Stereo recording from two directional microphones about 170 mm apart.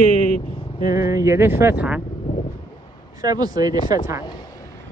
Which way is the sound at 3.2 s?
20° right (ahead or behind).